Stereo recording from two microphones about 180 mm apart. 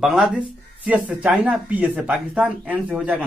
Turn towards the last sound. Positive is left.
turn(degrees=-10)  # may be behind; listen again after turning